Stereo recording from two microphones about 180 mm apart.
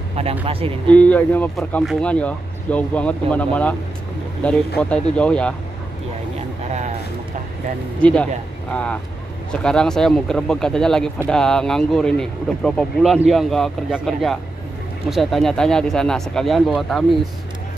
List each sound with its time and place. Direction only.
0.1 s speech: 35° right (ahead or behind)
0.8 s speech: 10° left (ahead or behind)
8.0 s speech: 5° left (ahead or behind)